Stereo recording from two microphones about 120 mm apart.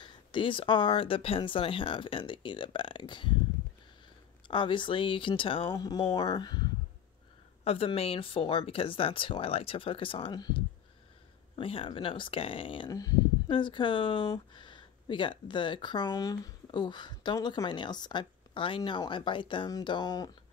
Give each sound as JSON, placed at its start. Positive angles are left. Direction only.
{"t": 0.0, "sound": "speech", "side_deg": 45}
{"t": 4.5, "sound": "speech", "side_deg": 45}
{"t": 5.8, "sound": "speech", "side_deg": 35}
{"t": 7.6, "sound": "speech", "side_deg": 55}
{"t": 12.9, "sound": "speech", "side_deg": 30}
{"t": 13.5, "sound": "speech", "side_deg": 40}